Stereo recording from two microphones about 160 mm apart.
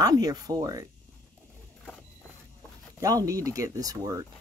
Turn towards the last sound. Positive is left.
turn(degrees=-20)  # may be behind; listen again after turning